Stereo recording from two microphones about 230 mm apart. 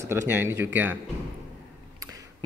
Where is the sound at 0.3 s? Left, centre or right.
Centre.